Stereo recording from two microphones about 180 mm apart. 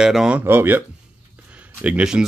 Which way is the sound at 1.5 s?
5° right (ahead or behind).